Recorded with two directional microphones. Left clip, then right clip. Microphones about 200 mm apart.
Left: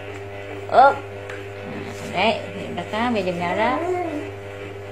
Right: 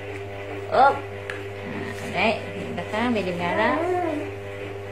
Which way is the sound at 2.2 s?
35° left (ahead or behind).